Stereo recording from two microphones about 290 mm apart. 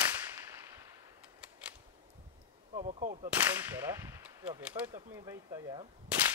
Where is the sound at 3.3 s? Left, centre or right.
Centre.